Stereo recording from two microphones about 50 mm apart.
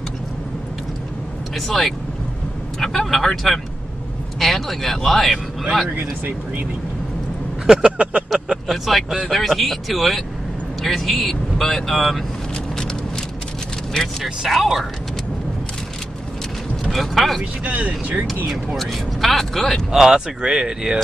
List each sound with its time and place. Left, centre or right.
1.5 s speech: centre
5.9 s speech: right
7.6 s a sound: centre
8.0 s speech: right
8.6 s speech: centre
14.5 s speech: centre
16.9 s speech: centre
17.6 s speech: right
18.8 s speech: centre
19.9 s speech: centre